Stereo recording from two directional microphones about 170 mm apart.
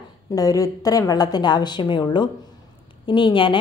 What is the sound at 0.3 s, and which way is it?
A woman's voice, 20° left (ahead or behind).